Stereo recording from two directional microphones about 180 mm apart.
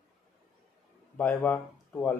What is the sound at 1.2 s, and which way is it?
Speech, 10° left (ahead or behind).